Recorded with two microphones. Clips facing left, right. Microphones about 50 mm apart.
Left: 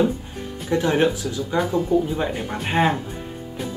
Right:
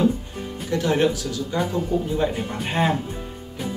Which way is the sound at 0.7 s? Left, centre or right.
Centre.